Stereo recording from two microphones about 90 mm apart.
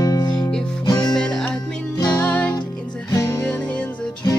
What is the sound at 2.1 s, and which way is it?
Music, 20° left (ahead or behind).